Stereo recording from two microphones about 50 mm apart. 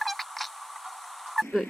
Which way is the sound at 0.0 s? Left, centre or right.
Centre.